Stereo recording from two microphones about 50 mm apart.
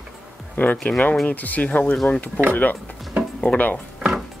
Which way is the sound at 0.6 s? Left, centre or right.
Left.